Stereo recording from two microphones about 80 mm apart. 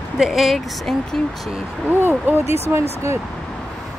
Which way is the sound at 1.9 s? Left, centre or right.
Right.